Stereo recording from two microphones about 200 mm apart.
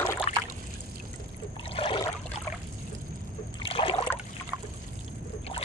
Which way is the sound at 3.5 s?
25° left (ahead or behind).